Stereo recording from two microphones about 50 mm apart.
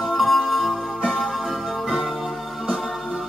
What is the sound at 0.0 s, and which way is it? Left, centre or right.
Music, centre.